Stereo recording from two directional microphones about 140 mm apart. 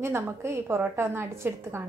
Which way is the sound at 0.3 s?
20° right (ahead or behind).